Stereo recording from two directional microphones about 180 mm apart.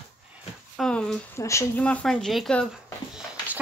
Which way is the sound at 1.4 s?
15° left (ahead or behind).